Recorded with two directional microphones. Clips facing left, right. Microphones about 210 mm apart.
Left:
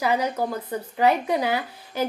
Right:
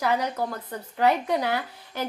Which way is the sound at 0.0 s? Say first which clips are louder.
Left 2 dB; 5° left (ahead or behind).